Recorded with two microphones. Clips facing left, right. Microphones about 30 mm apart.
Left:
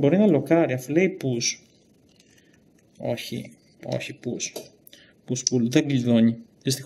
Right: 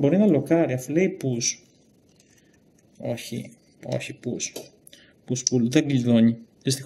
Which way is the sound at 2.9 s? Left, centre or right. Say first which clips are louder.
Left 2 dB; centre.